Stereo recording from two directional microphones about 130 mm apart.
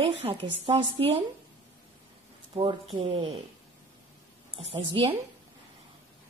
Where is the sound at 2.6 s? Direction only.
40° right (ahead or behind).